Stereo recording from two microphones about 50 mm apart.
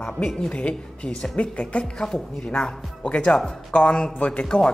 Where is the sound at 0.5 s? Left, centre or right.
Left.